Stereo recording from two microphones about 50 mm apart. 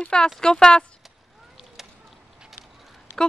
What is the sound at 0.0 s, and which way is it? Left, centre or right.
Speech, centre.